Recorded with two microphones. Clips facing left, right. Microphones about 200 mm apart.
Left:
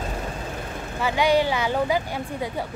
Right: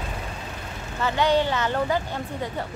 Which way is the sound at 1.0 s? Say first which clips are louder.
Left 1 dB; 10° left (ahead or behind).